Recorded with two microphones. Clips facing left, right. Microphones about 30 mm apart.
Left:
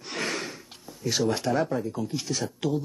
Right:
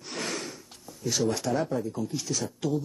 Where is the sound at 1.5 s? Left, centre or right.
Centre.